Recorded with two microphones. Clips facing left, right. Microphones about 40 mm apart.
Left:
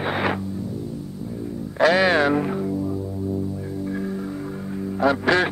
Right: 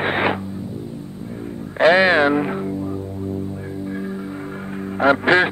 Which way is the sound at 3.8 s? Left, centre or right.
Centre.